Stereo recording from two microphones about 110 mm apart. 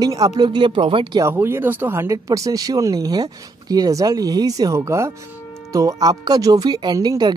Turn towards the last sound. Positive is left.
turn(degrees=-40)  # may be behind; listen again after turning